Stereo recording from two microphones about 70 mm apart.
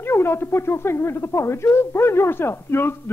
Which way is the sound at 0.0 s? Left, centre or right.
Left.